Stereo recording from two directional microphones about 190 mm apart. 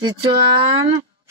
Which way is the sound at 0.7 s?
25° right (ahead or behind).